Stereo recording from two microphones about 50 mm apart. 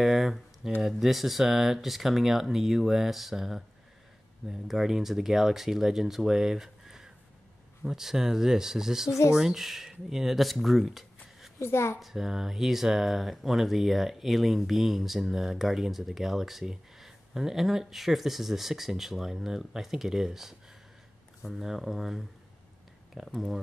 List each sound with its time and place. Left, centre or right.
0.0 s a sound: centre
0.8 s speech: centre
11.6 s a woman's voice: left
12.0 s speech: centre